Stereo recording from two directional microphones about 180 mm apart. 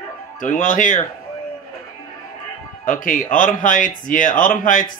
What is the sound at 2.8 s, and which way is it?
Speech, 50° left (ahead or behind).